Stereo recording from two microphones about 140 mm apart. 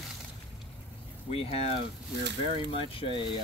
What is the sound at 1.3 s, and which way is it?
Speech, 45° left (ahead or behind).